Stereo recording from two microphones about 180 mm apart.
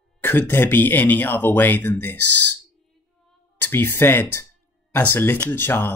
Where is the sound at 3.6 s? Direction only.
10° left (ahead or behind).